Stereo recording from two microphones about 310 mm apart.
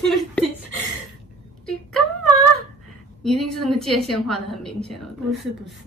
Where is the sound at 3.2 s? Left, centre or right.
Centre.